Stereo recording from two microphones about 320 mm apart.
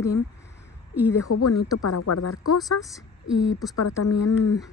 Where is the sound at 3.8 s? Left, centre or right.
Left.